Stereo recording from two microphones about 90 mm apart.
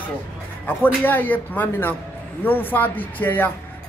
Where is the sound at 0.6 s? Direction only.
20° left (ahead or behind).